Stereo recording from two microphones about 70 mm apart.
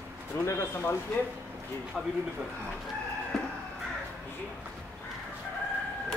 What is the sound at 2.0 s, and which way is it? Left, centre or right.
Speech, centre.